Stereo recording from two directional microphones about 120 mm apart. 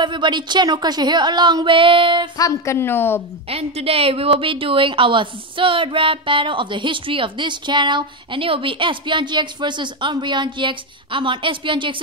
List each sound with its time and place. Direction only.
0.0 s a woman's voice: 40° right (ahead or behind)
2.3 s a woman's voice: 25° left (ahead or behind)
3.4 s a woman's voice: 55° right (ahead or behind)